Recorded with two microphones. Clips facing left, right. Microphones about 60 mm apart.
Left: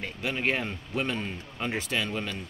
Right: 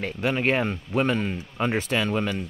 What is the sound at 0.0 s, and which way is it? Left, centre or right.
Speech, right.